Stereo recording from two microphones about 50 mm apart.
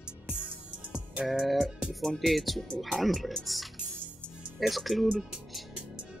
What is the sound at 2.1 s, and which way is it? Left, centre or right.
Speech, centre.